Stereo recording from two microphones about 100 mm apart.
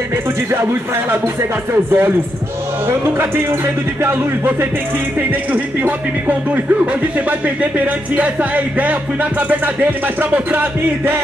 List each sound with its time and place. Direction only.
1.1 s speech: 25° right (ahead or behind)
3.2 s speech: 20° right (ahead or behind)